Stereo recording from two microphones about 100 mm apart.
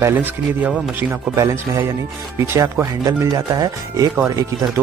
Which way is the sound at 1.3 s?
30° right (ahead or behind).